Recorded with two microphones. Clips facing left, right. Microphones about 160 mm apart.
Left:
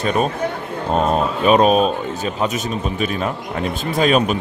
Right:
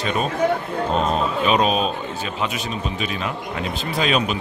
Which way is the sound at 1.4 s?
45° left (ahead or behind).